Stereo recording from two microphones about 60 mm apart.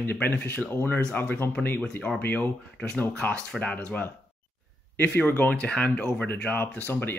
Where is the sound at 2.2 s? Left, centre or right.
Left.